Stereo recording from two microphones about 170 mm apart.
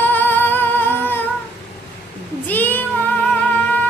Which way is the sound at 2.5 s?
10° left (ahead or behind).